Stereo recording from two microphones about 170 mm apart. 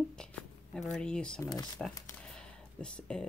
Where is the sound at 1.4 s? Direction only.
20° left (ahead or behind).